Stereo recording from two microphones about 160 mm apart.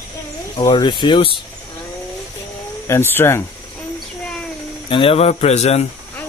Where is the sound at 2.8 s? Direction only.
15° left (ahead or behind).